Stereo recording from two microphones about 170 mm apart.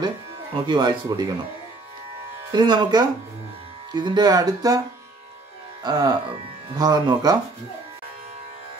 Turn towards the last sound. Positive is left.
turn(degrees=-25)  # may be behind; listen again after turning